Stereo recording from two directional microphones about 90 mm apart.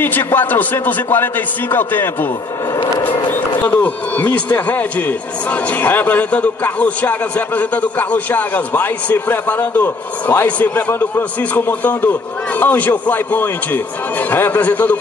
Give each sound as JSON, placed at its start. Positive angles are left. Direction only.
{"t": 0.0, "sound": "speech", "side_deg": 20}